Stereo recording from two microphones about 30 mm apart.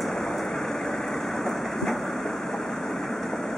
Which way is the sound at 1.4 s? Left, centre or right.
Centre.